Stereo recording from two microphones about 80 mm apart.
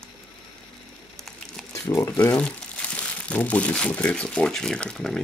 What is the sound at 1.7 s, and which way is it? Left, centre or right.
Speech, left.